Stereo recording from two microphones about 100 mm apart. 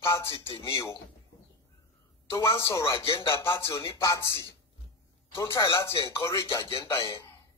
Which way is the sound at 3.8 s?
55° left (ahead or behind).